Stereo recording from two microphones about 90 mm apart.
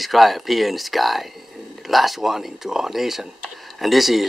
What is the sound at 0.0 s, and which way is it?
Speech, centre (ahead or behind).